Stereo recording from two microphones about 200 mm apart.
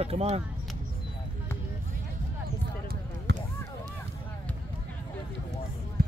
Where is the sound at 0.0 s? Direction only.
30° right (ahead or behind).